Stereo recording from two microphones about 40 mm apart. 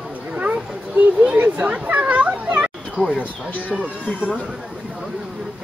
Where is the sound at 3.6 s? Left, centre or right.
Right.